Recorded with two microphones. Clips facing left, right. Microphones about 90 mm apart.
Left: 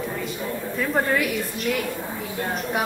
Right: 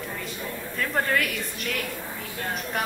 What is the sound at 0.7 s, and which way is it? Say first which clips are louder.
A woman's voice: left 3 dB; 10° left (ahead or behind).